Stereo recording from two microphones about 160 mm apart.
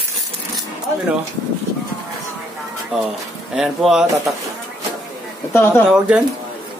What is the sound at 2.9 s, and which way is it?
Speech, 5° right (ahead or behind).